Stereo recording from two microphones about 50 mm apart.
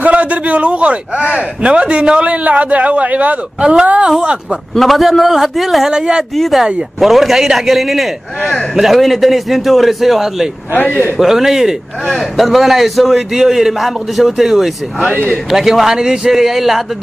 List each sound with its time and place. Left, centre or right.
0.0 s a man's voice: right
4.7 s a man's voice: centre
5.9 s speech: centre
6.3 s a man's voice: centre
10.7 s a man's voice: left
11.1 s a man's voice: centre